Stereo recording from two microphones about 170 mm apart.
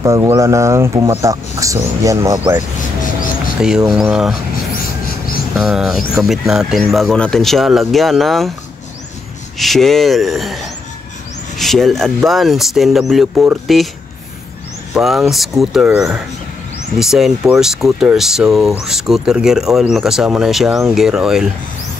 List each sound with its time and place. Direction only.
0.0 s speech: 15° right (ahead or behind)
3.6 s speech: 5° right (ahead or behind)
5.0 s a sound: 60° left (ahead or behind)
5.5 s speech: centre (ahead or behind)
9.6 s speech: centre (ahead or behind)
15.0 s speech: centre (ahead or behind)